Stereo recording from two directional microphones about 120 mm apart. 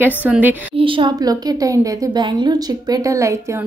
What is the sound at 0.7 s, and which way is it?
Speech, 45° right (ahead or behind).